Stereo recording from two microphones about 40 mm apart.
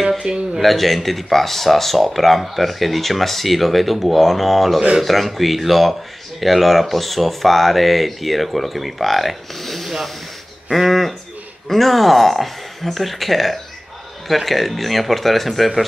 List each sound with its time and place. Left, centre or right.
0.3 s speech: right
0.6 s speech: centre